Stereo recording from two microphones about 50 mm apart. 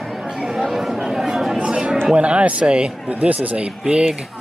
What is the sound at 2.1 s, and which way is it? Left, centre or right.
Speech, right.